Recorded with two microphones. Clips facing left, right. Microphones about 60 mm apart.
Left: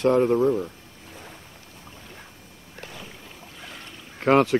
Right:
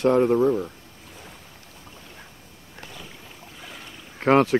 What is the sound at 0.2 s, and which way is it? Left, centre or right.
Speech, centre.